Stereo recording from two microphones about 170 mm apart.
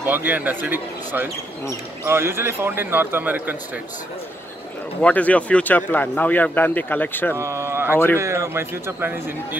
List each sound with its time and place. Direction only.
0.0 s a man's voice: 10° right (ahead or behind)
5.0 s speech: 10° left (ahead or behind)
7.3 s a man's voice: 15° right (ahead or behind)